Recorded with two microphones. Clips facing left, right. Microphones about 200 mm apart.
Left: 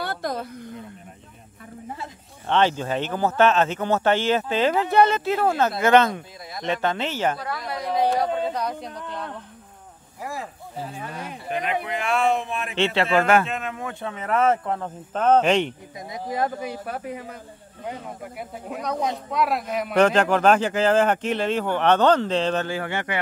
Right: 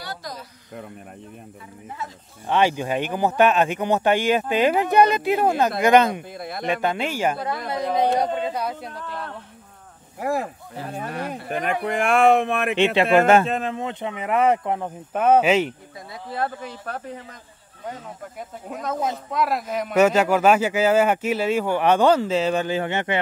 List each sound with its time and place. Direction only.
0.0 s a sound: 55° left (ahead or behind)
2.4 s speech: 10° right (ahead or behind)
6.3 s speech: 60° right (ahead or behind)
6.7 s speech: 10° right (ahead or behind)
7.3 s speech: 25° right (ahead or behind)
8.5 s speech: 5° right (ahead or behind)
10.1 s speech: 60° right (ahead or behind)
11.5 s speech: 45° right (ahead or behind); by 12.7 s 65° right (ahead or behind)
12.7 s speech: 15° right (ahead or behind)
16.1 s speech: 15° left (ahead or behind)
18.7 s speech: centre (ahead or behind)
22.8 s speech: 20° right (ahead or behind)